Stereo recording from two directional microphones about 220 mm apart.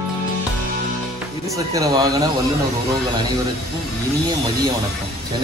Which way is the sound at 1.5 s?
15° right (ahead or behind).